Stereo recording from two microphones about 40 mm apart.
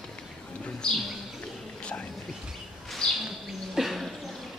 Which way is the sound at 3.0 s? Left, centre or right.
Centre.